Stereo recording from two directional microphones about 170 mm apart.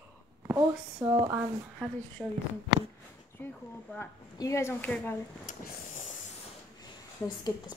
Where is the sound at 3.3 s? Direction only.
10° left (ahead or behind).